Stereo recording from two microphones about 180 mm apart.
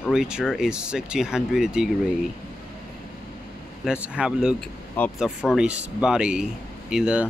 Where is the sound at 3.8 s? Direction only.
5° right (ahead or behind).